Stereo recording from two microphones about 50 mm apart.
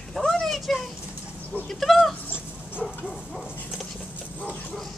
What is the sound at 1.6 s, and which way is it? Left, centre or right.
Goat, centre.